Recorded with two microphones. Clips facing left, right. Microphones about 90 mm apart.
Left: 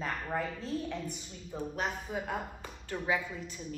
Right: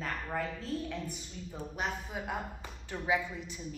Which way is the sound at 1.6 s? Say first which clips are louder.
Left 2 dB; 5° right (ahead or behind).